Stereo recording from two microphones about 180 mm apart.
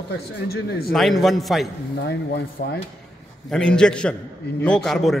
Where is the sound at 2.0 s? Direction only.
70° left (ahead or behind).